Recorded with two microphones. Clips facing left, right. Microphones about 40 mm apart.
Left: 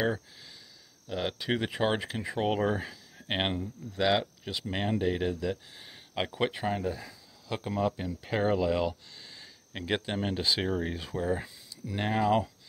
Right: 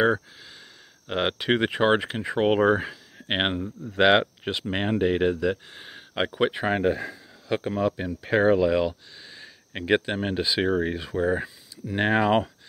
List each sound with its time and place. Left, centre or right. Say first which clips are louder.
1.0 s speech: right 7 dB; right
4.0 s speech: right 8 dB; right
4.5 s speech: right 5 dB; right
6.1 s speech: right 6 dB; right
6.8 s speech: right 10 dB; right
7.4 s speech: right 5 dB; right
11.9 s speech: right 5 dB; right